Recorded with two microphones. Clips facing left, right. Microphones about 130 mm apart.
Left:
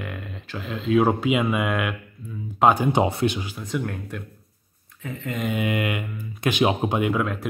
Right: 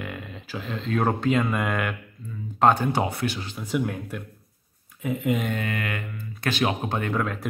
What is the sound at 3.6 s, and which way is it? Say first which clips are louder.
Speech: right 3 dB; 5° right (ahead or behind).